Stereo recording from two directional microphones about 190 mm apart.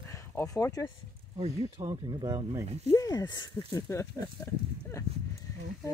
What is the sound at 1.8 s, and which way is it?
Speech, 25° right (ahead or behind).